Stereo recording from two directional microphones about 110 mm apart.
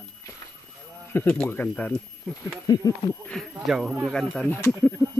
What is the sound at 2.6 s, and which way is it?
Speech, 35° left (ahead or behind).